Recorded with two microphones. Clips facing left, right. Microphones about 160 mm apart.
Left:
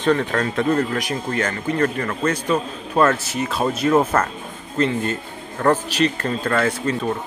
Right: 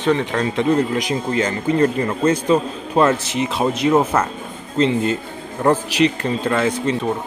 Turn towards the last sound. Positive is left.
turn(degrees=-20)  # may be behind; listen again after turning